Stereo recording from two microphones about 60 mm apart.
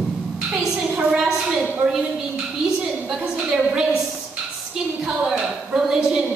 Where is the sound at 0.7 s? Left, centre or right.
Centre.